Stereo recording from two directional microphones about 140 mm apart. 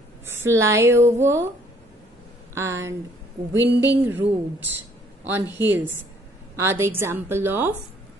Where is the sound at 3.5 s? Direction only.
25° left (ahead or behind).